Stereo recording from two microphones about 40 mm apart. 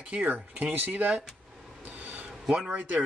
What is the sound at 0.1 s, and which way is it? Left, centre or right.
Speech, right.